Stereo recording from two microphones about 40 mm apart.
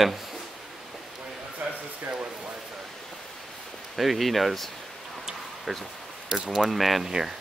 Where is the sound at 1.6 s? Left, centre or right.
Centre.